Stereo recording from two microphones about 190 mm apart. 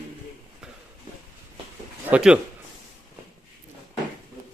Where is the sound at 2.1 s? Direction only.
5° right (ahead or behind).